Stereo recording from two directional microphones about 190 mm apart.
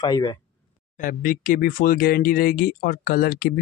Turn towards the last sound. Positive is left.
turn(degrees=55)  # may be behind; listen again after turning